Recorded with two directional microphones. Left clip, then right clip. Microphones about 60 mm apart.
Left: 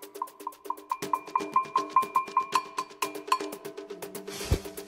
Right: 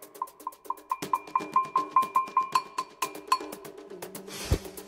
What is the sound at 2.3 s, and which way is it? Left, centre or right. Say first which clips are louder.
Music: right 1 dB; right.